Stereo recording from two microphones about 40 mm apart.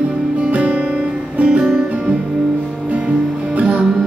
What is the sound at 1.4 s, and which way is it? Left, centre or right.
Music, right.